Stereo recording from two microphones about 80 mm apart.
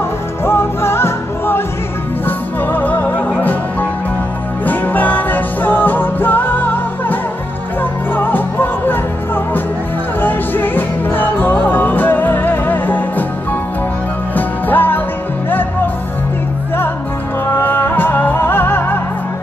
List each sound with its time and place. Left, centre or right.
0.5 s music: left
4.6 s music: left
14.3 s music: left
17.5 s music: left